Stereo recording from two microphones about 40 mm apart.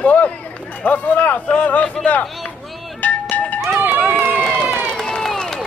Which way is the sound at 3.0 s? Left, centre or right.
Left.